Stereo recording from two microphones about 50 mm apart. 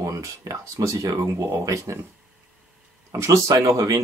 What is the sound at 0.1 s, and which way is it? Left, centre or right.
Speech, right.